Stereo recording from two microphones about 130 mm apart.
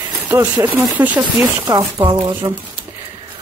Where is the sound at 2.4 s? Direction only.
35° right (ahead or behind).